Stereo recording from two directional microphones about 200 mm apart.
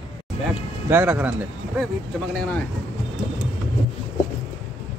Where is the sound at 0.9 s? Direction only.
10° right (ahead or behind).